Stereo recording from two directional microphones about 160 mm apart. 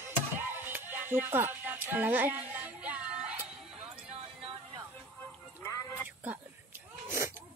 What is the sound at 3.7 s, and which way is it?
Music, 40° right (ahead or behind).